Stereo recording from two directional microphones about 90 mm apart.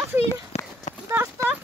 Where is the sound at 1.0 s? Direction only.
30° right (ahead or behind).